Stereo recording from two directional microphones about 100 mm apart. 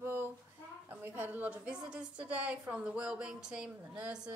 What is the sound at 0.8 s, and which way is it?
A woman's voice, 20° right (ahead or behind).